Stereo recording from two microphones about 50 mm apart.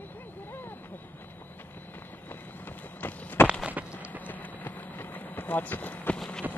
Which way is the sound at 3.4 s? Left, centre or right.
Left.